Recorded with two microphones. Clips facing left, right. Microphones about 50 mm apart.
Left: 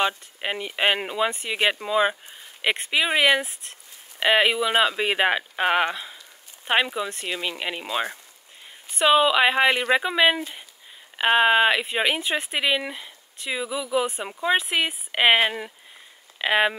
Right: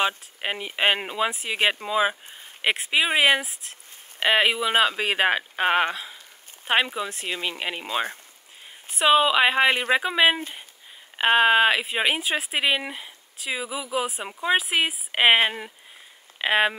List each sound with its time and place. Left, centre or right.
0.4 s speech: centre
7.8 s speech: right
8.9 s speech: centre
16.3 s speech: centre